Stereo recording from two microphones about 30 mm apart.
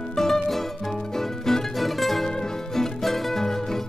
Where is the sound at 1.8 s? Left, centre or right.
Centre.